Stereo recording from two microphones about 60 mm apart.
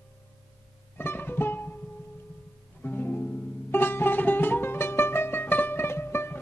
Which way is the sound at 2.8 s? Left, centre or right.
Left.